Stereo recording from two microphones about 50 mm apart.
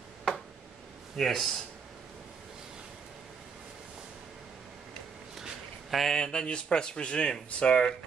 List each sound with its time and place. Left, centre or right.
0.3 s a sound: centre
1.1 s speech: centre
5.9 s speech: centre
6.1 s speech: centre